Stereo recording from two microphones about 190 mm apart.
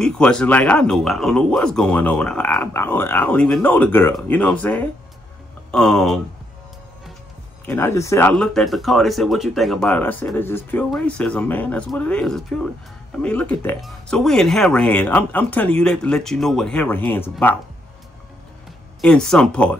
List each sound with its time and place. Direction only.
0.0 s speech: 5° left (ahead or behind)
7.6 s speech: 10° left (ahead or behind)
18.9 s speech: 5° left (ahead or behind)